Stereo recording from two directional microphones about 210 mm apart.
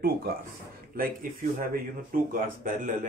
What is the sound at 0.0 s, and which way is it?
Speech, 45° right (ahead or behind).